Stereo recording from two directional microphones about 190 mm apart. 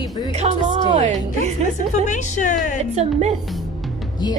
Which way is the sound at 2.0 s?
40° left (ahead or behind).